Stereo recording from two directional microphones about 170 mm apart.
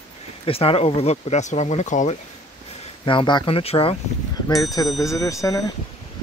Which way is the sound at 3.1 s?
25° left (ahead or behind).